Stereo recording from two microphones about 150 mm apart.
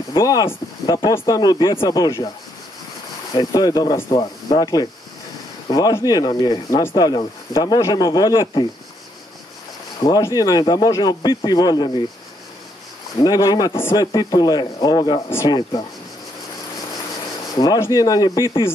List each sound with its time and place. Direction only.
0.2 s speech: 20° left (ahead or behind)
3.3 s speech: 25° left (ahead or behind)
10.0 s speech: 25° left (ahead or behind)
13.2 s speech: 25° left (ahead or behind)
17.6 s speech: 20° left (ahead or behind)